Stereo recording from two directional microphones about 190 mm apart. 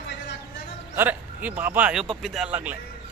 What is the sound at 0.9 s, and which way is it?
Speech, 10° right (ahead or behind).